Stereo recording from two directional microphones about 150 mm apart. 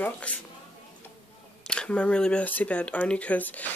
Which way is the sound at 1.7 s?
5° left (ahead or behind).